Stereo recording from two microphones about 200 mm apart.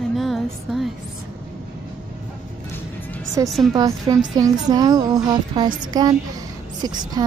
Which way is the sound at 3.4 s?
Centre (ahead or behind).